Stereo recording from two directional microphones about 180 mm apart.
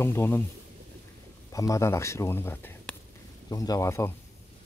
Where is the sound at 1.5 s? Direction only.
20° left (ahead or behind).